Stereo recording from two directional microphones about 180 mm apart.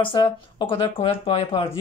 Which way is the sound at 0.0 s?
25° left (ahead or behind).